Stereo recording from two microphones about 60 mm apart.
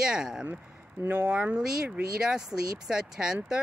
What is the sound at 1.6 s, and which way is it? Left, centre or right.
Speech, centre.